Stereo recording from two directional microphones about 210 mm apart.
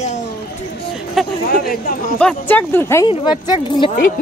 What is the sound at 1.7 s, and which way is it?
Speech, 40° left (ahead or behind).